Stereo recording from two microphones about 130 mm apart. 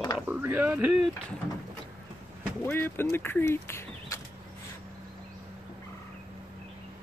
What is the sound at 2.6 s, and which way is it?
Speech, 15° left (ahead or behind).